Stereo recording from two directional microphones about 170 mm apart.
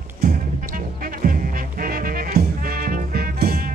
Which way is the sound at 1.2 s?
55° right (ahead or behind).